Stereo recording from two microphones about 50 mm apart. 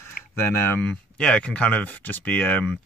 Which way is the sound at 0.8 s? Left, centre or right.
Left.